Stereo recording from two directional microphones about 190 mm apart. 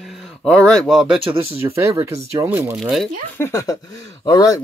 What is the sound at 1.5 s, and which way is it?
Speech, 15° right (ahead or behind).